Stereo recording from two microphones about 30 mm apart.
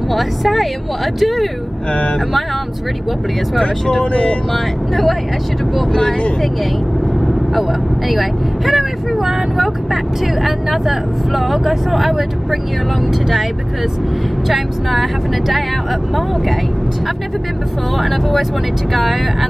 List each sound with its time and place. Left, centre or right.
0.1 s speech: centre
4.0 s speech: left
8.1 s speech: centre
14.5 s speech: centre